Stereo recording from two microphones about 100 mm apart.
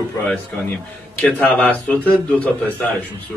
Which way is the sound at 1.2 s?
15° left (ahead or behind).